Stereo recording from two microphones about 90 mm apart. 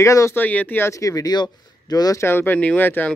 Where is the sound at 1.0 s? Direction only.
40° left (ahead or behind).